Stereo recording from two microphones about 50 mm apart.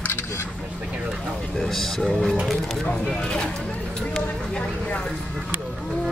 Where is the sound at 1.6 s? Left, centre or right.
Centre; by 5.0 s left.